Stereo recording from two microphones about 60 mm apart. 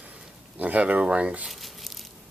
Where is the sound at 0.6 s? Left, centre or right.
Right.